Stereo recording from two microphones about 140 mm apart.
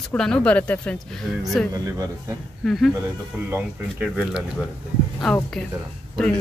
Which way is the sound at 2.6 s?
Centre (ahead or behind).